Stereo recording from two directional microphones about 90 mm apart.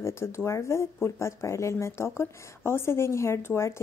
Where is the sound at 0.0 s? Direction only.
30° left (ahead or behind).